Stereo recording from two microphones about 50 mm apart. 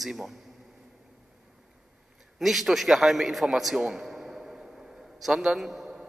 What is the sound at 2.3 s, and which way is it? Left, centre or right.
A man's voice, centre.